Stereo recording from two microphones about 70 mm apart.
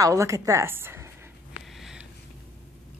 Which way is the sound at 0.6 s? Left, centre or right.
Right.